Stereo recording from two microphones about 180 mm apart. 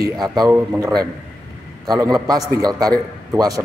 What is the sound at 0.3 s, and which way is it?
A man's voice, 20° right (ahead or behind).